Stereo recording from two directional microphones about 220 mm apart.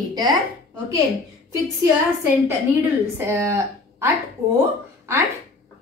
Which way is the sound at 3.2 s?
10° right (ahead or behind).